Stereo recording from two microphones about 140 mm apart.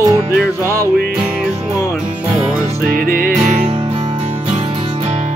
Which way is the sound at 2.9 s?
90° right.